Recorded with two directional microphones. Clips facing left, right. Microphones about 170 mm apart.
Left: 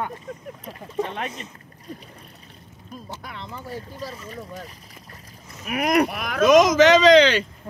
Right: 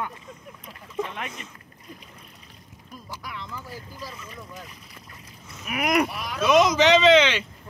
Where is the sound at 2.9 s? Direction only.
25° left (ahead or behind).